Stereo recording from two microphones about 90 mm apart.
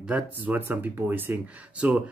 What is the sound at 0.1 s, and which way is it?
Speech, 20° right (ahead or behind).